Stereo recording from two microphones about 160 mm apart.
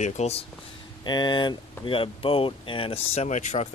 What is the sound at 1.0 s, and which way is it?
Speech, 30° left (ahead or behind).